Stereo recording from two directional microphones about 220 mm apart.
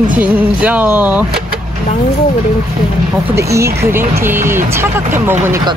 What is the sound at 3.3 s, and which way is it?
Speech, 10° right (ahead or behind).